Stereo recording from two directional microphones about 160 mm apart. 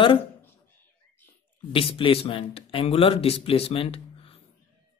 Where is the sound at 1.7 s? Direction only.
35° left (ahead or behind).